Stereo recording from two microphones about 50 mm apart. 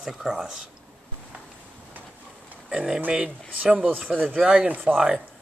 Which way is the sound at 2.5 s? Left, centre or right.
Right.